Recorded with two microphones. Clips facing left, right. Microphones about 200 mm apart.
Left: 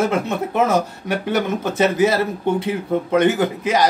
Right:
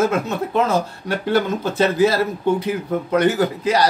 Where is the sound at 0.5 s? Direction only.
15° left (ahead or behind).